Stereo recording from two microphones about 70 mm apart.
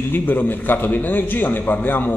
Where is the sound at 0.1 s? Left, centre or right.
Left.